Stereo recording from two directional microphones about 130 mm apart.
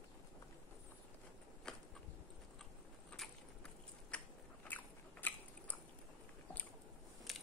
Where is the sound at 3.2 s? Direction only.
5° left (ahead or behind).